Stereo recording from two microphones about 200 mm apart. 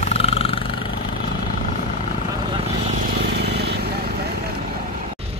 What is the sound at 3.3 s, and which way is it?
Vehicle, 55° right (ahead or behind).